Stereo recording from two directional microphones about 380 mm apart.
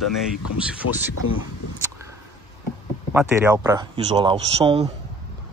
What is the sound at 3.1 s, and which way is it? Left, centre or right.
Speech, centre.